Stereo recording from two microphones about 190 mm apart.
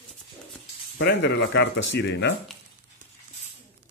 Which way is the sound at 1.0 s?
60° left (ahead or behind).